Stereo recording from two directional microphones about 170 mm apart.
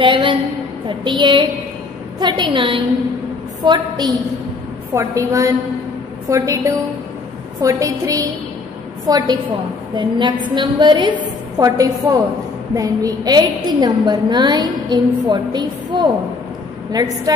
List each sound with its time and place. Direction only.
0.0 s a woman's voice: 30° right (ahead or behind)